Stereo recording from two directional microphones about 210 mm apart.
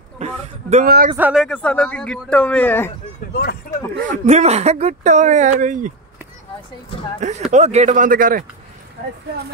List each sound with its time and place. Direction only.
0.2 s speech: 30° right (ahead or behind)
0.8 s speech: 50° right (ahead or behind)
1.1 s speech: 5° right (ahead or behind)
3.9 s speech: 35° right (ahead or behind)
7.2 s speech: 35° right (ahead or behind)